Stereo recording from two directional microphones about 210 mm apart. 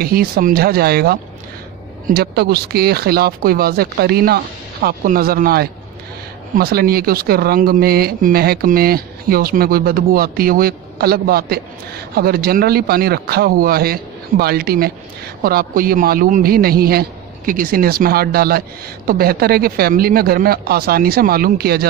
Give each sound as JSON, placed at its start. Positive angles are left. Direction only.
{"t": 0.0, "sound": "speech", "side_deg": -45}